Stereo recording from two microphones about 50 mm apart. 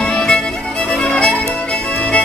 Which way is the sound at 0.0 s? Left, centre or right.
Centre.